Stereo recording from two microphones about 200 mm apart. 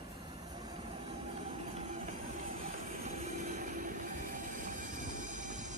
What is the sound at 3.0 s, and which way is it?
Train, 40° right (ahead or behind).